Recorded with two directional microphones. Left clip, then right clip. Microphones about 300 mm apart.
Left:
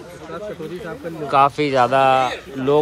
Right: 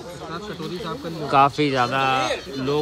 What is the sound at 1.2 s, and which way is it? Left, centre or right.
Speech, centre.